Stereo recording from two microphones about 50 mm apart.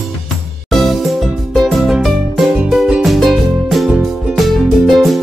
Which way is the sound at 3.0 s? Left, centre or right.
Centre.